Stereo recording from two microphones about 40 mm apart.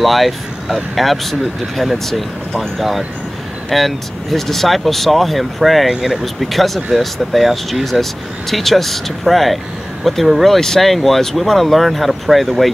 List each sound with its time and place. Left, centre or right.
0.0 s speech: centre